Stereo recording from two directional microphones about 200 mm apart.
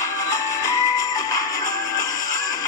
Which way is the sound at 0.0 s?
15° left (ahead or behind).